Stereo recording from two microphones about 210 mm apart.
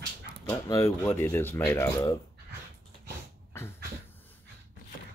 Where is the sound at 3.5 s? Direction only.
10° left (ahead or behind).